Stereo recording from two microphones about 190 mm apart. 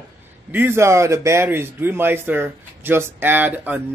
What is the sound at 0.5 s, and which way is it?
Speech, 10° right (ahead or behind).